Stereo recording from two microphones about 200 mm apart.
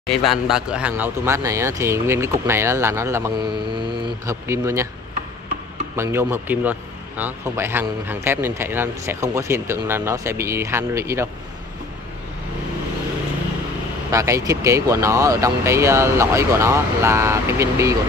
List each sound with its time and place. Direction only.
0.1 s speech: centre (ahead or behind); by 4.4 s 25° right (ahead or behind)
4.5 s speech: 15° right (ahead or behind)
5.9 s speech: 10° right (ahead or behind)
14.1 s speech: 15° right (ahead or behind)